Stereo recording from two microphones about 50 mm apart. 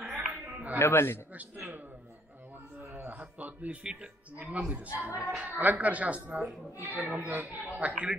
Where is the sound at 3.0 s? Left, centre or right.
Right.